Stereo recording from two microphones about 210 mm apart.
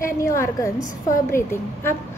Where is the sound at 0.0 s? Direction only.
15° left (ahead or behind).